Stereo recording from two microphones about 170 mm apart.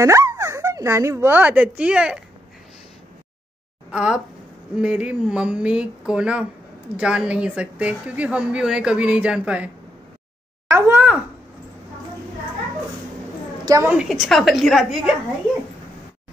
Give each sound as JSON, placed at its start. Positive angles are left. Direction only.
{"t": 0.0, "sound": "speech", "side_deg": -15}
{"t": 3.9, "sound": "a woman's voice", "side_deg": -5}
{"t": 10.7, "sound": "a child's voice", "side_deg": -15}
{"t": 13.7, "sound": "a woman's voice", "side_deg": -15}
{"t": 14.2, "sound": "a woman's voice", "side_deg": 0}